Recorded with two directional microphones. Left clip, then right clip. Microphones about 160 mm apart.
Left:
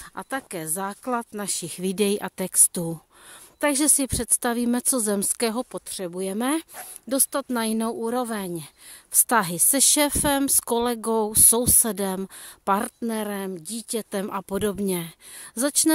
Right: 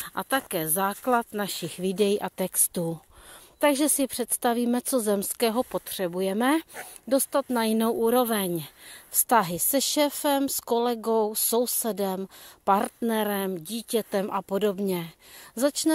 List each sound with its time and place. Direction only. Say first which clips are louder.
0.0 s speech: right 4 dB; 5° left (ahead or behind)
1.7 s a woman's voice: even; 35° left (ahead or behind)
5.7 s speech: right 3 dB; 15° left (ahead or behind); by 7.6 s 30° left (ahead or behind)
7.6 s speech: right 3 dB; 15° left (ahead or behind)
9.1 s a woman's voice: even; 35° left (ahead or behind)
13.1 s speech: right 4 dB; 10° left (ahead or behind)
14.2 s a woman's voice: right 1 dB; 35° left (ahead or behind)